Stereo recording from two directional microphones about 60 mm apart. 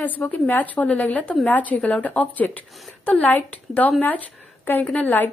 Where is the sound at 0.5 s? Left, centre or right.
Left.